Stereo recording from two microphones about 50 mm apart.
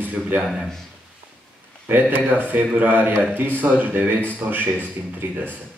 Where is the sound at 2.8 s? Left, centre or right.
Right.